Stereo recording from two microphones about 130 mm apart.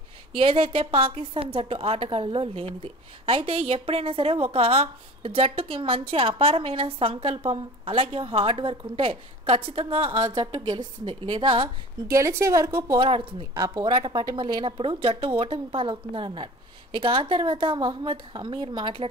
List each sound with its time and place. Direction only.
0.3 s a woman's voice: 45° right (ahead or behind)
12.1 s a woman's voice: 20° right (ahead or behind)
13.0 s a woman's voice: 40° right (ahead or behind)
13.6 s speech: 30° right (ahead or behind)